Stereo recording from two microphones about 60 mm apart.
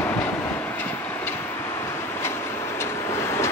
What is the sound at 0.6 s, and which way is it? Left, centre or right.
Train, left.